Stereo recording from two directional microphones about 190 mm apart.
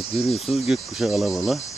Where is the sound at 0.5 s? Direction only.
Centre (ahead or behind).